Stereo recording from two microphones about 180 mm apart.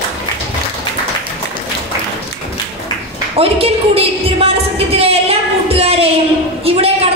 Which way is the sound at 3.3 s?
35° right (ahead or behind).